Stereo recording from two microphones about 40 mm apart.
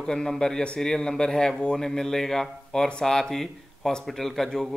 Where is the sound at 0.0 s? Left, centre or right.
Centre.